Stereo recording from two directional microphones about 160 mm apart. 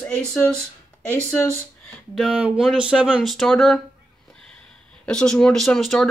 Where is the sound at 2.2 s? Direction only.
5° right (ahead or behind).